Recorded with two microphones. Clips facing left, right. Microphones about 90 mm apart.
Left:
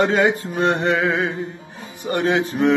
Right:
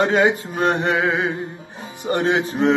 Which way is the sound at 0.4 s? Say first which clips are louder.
Even; 5° right (ahead or behind).